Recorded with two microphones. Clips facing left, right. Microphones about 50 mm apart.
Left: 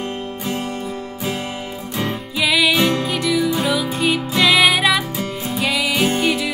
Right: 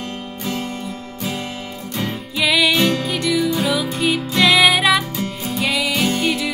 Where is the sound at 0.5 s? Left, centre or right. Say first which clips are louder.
Even; left.